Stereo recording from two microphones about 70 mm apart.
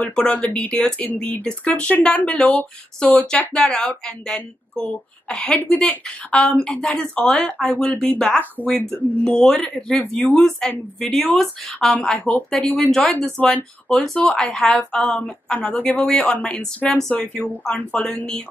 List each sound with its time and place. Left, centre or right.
0.0 s speech: centre
8.4 s speech: left
9.2 s speech: centre